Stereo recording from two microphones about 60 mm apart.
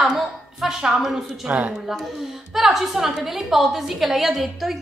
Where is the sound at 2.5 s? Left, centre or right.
Centre.